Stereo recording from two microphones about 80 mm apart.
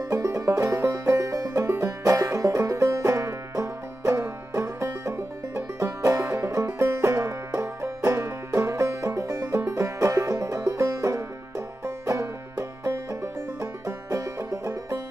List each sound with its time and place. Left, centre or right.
0.1 s music: right
9.1 s music: right
9.7 s music: right
14.6 s music: right